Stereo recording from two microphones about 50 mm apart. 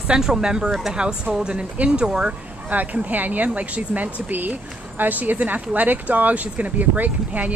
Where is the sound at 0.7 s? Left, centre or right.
Centre.